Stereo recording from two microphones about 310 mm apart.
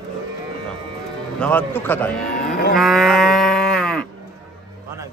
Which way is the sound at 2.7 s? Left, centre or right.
Centre.